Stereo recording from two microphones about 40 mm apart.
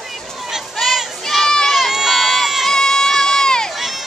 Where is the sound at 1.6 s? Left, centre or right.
Centre.